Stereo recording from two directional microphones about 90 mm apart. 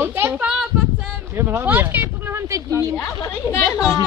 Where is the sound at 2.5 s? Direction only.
35° right (ahead or behind).